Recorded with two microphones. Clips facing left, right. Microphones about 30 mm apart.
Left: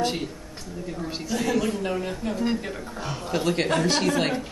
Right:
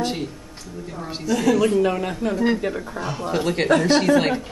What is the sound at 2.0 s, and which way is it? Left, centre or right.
Speech, right.